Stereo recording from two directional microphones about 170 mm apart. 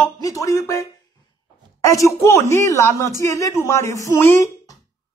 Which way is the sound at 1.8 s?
20° left (ahead or behind).